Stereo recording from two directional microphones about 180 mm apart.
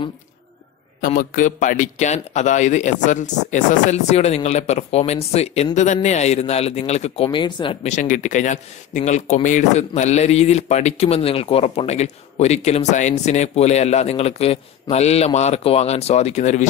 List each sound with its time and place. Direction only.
1.0 s speech: 45° left (ahead or behind); by 7.9 s 30° left (ahead or behind)
7.9 s speech: 45° left (ahead or behind)